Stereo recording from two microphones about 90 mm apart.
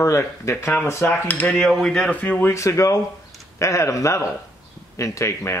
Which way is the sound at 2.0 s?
20° left (ahead or behind).